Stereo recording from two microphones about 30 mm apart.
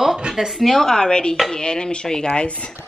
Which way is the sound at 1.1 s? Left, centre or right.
Left.